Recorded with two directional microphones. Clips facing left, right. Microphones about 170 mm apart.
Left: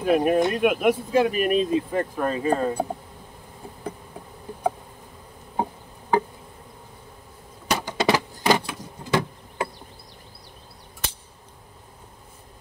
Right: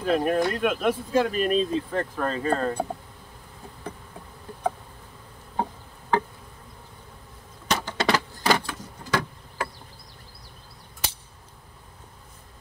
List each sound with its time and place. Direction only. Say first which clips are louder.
0.0 s speech: left 3 dB; 15° left (ahead or behind)
5.6 s insect: left 2 dB; 15° left (ahead or behind)
7.6 s vehicle: left 3 dB; 10° left (ahead or behind)